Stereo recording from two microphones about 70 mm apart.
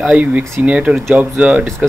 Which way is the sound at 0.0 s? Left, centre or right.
Right.